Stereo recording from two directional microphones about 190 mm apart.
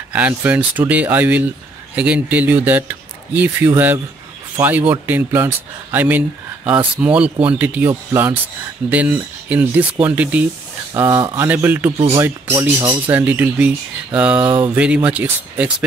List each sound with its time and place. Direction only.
0.1 s speech: 10° right (ahead or behind)
12.5 s speech: 25° right (ahead or behind)
13.0 s speech: 10° right (ahead or behind)